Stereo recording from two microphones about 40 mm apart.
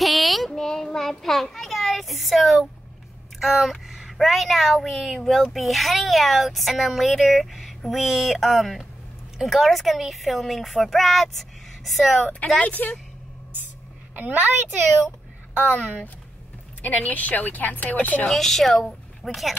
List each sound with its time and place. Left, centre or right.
0.0 s child singing: centre
0.5 s child singing: centre
3.3 s speech: centre
12.5 s speech: left
14.1 s a woman's voice: right
16.8 s speech: left
18.3 s speech: centre